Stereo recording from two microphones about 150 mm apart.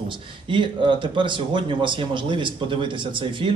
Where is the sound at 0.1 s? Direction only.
30° right (ahead or behind).